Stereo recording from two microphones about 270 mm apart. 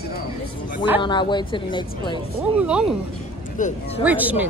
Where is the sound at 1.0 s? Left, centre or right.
Centre.